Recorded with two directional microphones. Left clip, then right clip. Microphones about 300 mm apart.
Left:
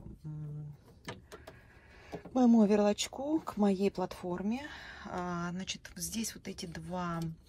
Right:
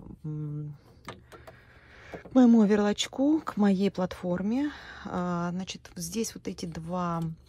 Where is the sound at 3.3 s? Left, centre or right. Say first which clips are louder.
Right 7 dB; right.